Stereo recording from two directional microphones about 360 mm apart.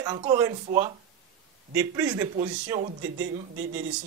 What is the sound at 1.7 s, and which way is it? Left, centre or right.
A man's voice, centre.